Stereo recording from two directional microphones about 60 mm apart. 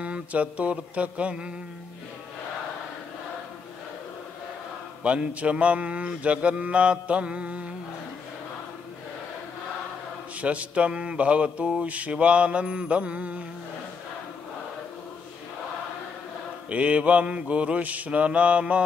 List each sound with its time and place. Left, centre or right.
0.0 s mantra: right
5.0 s mantra: right
10.4 s mantra: right
16.6 s mantra: right